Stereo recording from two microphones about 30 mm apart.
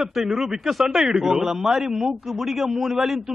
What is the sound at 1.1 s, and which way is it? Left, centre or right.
A man's voice, centre.